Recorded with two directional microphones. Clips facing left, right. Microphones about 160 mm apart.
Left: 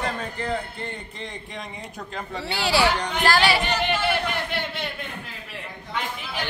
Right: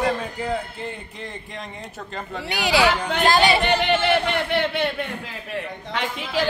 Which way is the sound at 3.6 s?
65° right (ahead or behind).